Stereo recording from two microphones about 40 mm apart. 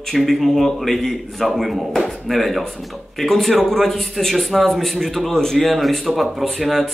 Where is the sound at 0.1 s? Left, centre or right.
Centre.